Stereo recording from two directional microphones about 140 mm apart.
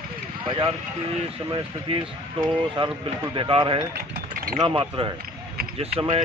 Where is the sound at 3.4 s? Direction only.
35° right (ahead or behind).